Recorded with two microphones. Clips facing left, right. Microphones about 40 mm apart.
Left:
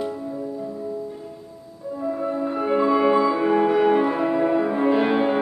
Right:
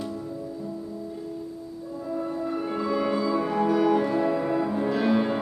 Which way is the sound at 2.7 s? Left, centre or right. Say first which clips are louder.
Left 10 dB; left.